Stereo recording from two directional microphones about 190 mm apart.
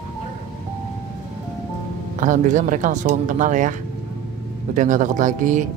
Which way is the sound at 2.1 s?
45° right (ahead or behind).